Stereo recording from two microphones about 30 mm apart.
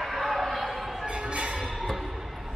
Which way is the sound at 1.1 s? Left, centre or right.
Right.